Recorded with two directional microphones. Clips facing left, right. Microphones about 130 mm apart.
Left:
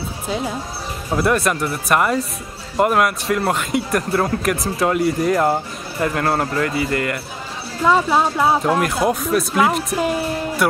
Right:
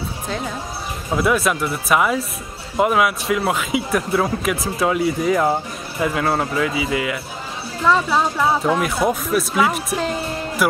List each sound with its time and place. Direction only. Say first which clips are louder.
1.1 s a man's voice: even; centre (ahead or behind)
7.8 s speech: left 2 dB; 15° left (ahead or behind)
8.7 s a man's voice: left 1 dB; centre (ahead or behind)